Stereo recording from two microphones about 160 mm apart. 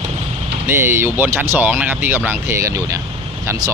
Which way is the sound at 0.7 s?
15° right (ahead or behind).